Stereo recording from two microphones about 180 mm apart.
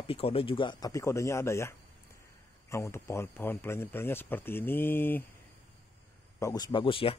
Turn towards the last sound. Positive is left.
turn(degrees=30)  # may be behind; listen again after turning